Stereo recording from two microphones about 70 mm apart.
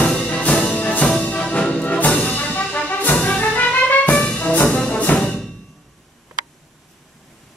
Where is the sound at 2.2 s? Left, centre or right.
Left.